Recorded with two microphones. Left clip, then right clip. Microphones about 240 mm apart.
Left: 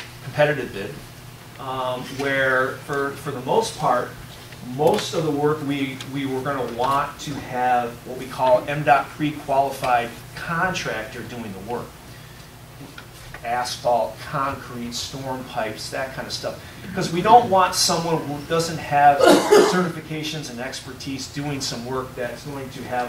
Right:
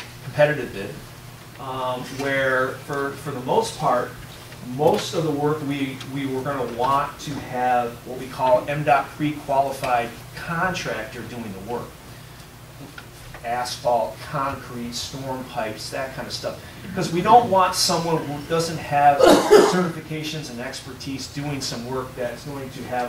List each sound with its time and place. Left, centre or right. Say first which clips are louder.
0.4 s speech: right 1 dB; centre
13.5 s speech: left 1 dB; centre